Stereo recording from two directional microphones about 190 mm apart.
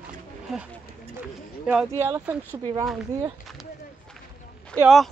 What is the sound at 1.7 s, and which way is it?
Speech, 10° right (ahead or behind).